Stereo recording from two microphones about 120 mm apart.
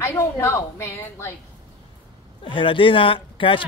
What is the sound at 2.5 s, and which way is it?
Speech, 45° left (ahead or behind).